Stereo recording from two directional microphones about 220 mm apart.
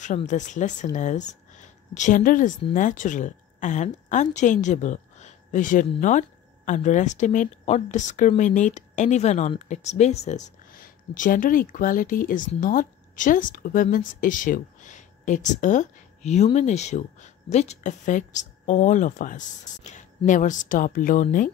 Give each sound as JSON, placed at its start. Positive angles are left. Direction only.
{"t": 0.3, "sound": "a woman's voice", "side_deg": 35}